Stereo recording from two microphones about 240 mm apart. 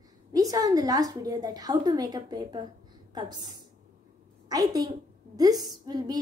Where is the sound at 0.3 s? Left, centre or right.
Centre.